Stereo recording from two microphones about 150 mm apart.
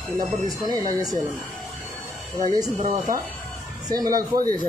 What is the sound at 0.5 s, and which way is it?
Speech, 25° right (ahead or behind).